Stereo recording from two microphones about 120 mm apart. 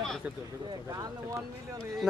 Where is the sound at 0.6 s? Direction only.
35° right (ahead or behind).